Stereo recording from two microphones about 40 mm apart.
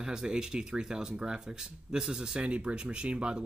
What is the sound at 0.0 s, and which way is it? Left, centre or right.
Speech, centre.